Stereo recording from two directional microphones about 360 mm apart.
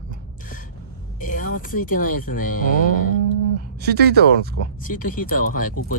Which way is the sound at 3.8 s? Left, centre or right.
Right.